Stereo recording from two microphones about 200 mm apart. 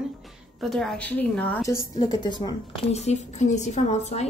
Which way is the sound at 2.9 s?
35° left (ahead or behind).